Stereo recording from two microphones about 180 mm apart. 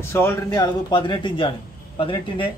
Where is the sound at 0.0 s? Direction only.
15° left (ahead or behind).